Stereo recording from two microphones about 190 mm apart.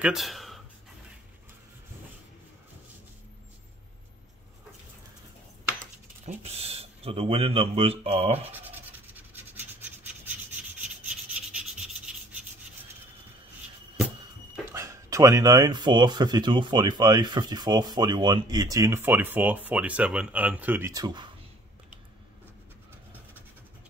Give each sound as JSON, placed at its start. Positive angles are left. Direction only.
{"t": 0.0, "sound": "speech", "side_deg": 0}
{"t": 5.8, "sound": "speech", "side_deg": -35}
{"t": 8.5, "sound": "rub", "side_deg": -10}
{"t": 14.7, "sound": "speech", "side_deg": -15}